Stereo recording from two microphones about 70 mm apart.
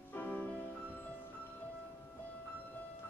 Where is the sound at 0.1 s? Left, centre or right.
Left.